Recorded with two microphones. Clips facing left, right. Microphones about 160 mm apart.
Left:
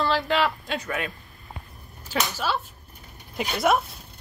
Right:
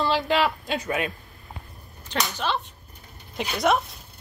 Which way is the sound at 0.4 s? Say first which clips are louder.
Right 1 dB; 20° right (ahead or behind).